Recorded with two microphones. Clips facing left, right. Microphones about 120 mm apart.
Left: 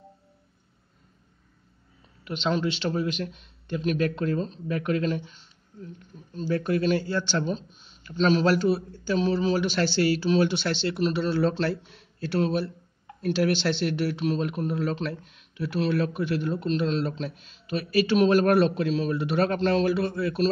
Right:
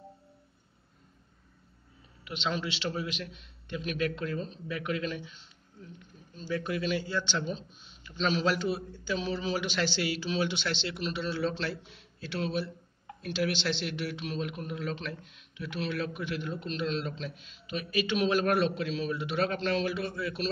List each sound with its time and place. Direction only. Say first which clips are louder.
2.2 s speech: left 7 dB; 40° left (ahead or behind)
6.2 s a sound: left 6 dB; 45° left (ahead or behind)
6.5 s speech: left 7 dB; 45° left (ahead or behind)